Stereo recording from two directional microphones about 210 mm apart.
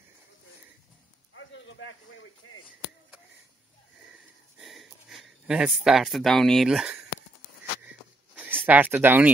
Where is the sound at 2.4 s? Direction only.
90° left.